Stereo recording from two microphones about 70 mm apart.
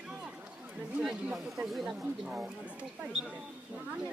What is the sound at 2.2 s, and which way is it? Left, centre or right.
Speech, centre.